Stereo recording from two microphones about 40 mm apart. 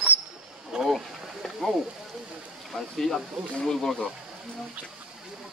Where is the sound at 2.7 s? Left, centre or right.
Centre.